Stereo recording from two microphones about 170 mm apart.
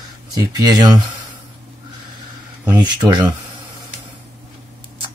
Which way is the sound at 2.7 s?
25° right (ahead or behind).